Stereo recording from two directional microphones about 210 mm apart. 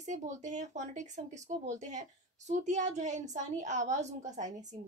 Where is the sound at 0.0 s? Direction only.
35° right (ahead or behind).